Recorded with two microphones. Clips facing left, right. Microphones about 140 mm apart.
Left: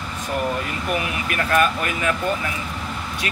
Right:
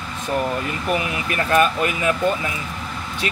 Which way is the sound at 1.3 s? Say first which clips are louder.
Right 2 dB; 25° right (ahead or behind).